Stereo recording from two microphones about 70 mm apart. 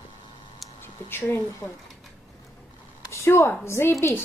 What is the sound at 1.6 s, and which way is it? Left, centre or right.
Speech, left.